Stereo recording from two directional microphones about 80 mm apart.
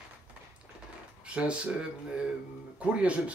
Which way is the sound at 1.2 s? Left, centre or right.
Centre.